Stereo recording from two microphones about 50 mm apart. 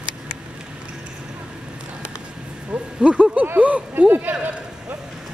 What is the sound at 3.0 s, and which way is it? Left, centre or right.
Speech, right.